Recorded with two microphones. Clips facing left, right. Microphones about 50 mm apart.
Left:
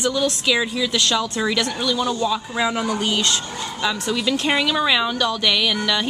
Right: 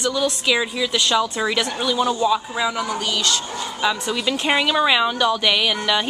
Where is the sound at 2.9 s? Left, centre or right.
Left.